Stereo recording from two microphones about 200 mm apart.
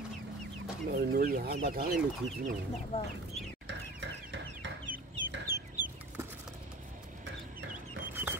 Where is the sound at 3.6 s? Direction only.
65° right (ahead or behind).